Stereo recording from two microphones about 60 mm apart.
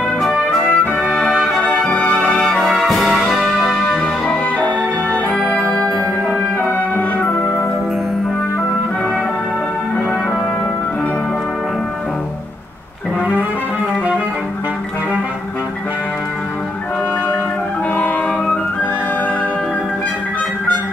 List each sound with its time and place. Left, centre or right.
0.2 s brass instrument: centre
4.6 s organ: left
5.5 s music: centre